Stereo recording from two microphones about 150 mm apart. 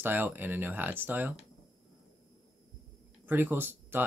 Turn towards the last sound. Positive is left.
turn(degrees=-15)  # may be behind; listen again after turning